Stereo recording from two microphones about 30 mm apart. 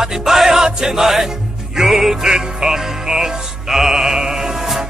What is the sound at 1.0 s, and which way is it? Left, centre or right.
Music, centre.